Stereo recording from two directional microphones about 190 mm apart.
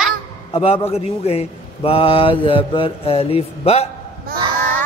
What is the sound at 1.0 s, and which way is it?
Mantra, 35° left (ahead or behind).